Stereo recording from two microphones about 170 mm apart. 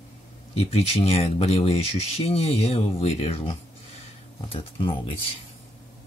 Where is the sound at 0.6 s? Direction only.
35° left (ahead or behind).